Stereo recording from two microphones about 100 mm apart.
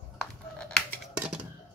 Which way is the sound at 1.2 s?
10° right (ahead or behind).